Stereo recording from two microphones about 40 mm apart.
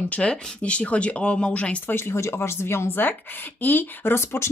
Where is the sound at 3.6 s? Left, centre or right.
Left.